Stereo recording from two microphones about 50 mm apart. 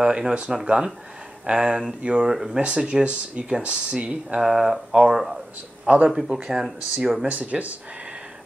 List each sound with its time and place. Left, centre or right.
0.0 s speech: centre
2.2 s speech: centre
4.4 s speech: centre
5.9 s speech: right
6.2 s speech: centre
7.2 s speech: right